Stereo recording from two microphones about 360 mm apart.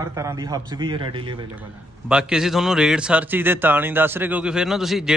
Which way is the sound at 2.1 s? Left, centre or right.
Centre.